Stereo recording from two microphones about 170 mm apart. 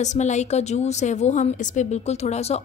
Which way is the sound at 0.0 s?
45° left (ahead or behind).